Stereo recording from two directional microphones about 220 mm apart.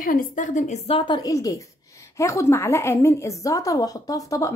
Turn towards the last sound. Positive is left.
turn(degrees=15)  # may be behind; listen again after turning